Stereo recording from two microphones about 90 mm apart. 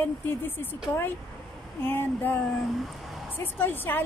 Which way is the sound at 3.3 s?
20° left (ahead or behind).